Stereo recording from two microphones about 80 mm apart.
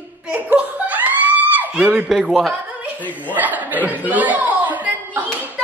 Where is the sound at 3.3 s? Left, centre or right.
Right.